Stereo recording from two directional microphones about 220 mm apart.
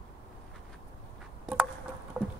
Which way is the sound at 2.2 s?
5° right (ahead or behind).